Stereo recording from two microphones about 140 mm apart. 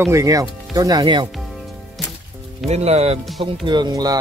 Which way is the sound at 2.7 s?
50° right (ahead or behind).